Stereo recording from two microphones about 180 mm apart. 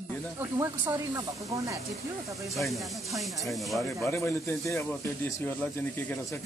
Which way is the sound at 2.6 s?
Centre (ahead or behind).